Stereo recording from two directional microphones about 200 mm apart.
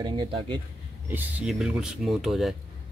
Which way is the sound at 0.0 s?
25° right (ahead or behind).